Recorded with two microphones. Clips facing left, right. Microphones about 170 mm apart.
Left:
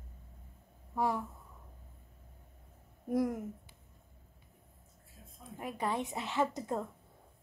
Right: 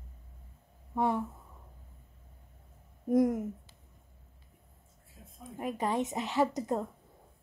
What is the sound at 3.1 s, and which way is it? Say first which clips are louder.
Speech: right 6 dB; 20° right (ahead or behind).